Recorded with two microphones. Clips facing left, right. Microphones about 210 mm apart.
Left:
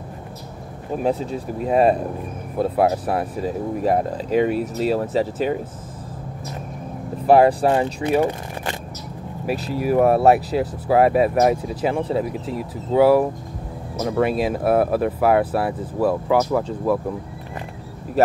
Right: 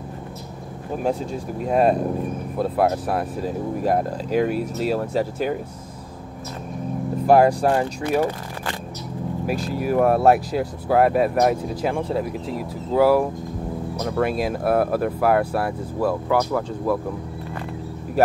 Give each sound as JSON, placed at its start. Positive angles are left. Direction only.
{"t": 0.9, "sound": "speech", "side_deg": 0}
{"t": 7.2, "sound": "speech", "side_deg": 5}
{"t": 8.2, "sound": "speech", "side_deg": 20}
{"t": 9.5, "sound": "speech", "side_deg": 0}